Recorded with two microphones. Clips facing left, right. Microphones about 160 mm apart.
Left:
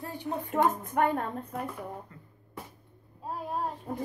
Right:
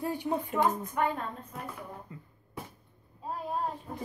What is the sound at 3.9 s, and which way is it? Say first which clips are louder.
Speech: left 5 dB; 45° left (ahead or behind).